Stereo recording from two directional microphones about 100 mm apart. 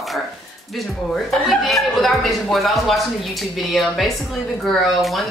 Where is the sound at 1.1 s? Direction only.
Centre (ahead or behind).